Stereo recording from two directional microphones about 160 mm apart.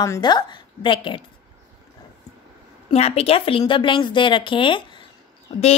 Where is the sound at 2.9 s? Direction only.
40° left (ahead or behind).